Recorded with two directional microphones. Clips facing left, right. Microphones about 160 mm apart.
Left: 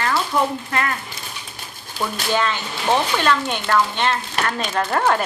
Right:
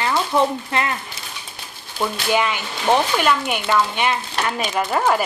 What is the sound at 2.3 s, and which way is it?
Speech, 15° right (ahead or behind).